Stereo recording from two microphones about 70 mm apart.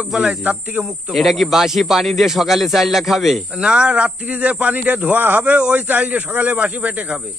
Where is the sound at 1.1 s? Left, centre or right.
Centre.